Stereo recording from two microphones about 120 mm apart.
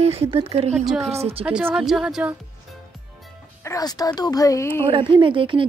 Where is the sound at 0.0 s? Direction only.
55° right (ahead or behind).